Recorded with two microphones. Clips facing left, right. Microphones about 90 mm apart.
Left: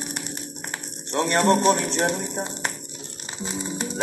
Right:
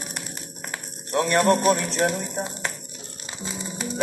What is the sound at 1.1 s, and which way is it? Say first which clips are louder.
Music: even; 25° left (ahead or behind).